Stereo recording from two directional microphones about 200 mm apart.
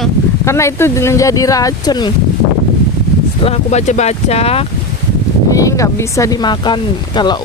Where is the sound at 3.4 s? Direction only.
30° left (ahead or behind).